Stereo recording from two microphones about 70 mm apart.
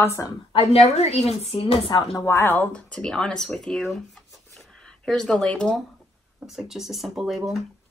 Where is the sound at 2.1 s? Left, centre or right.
Left.